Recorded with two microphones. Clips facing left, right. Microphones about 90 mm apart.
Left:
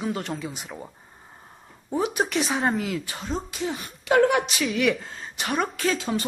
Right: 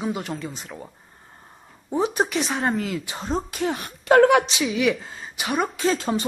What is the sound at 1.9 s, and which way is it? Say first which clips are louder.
Speech: right 2 dB; 30° right (ahead or behind).